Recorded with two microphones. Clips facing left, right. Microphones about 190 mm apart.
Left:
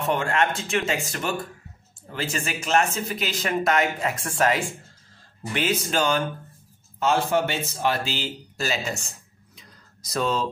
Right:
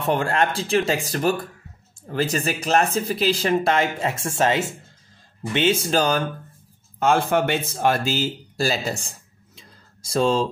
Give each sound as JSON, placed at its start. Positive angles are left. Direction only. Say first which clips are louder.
{"t": 0.0, "sound": "speech", "louder": "right 2 dB", "side_deg": -35}
{"t": 7.0, "sound": "speech", "louder": "right 3 dB", "side_deg": -55}
{"t": 9.6, "sound": "a sound", "louder": "right 2 dB", "side_deg": -30}